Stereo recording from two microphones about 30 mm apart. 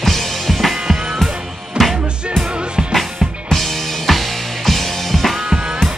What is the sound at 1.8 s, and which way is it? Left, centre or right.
Music, right.